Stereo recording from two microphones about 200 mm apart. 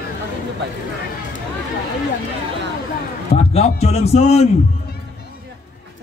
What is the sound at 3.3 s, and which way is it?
A man's voice, 30° left (ahead or behind).